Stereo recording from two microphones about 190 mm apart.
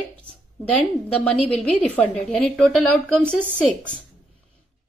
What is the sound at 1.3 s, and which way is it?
A woman's voice, 5° left (ahead or behind).